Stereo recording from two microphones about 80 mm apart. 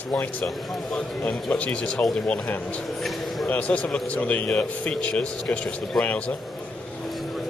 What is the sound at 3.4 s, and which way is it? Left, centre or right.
A man's voice, centre.